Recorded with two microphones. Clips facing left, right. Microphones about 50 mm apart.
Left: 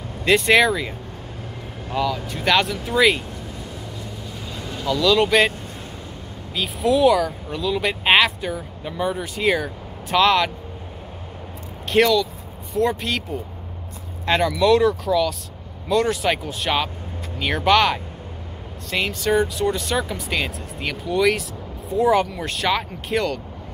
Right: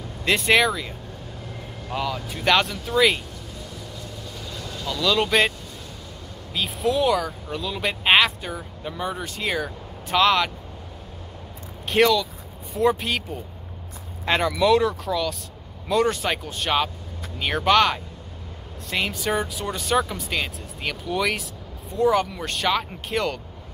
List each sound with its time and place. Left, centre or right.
0.2 s speech: centre
2.0 s speech: centre
4.6 s vehicle: left
4.8 s speech: centre
6.5 s speech: centre
11.9 s speech: centre
14.2 s speech: centre